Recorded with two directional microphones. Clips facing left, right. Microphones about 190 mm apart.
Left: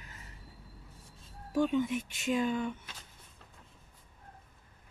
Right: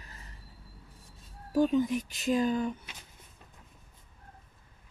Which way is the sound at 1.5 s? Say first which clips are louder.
Right 3 dB; 35° right (ahead or behind).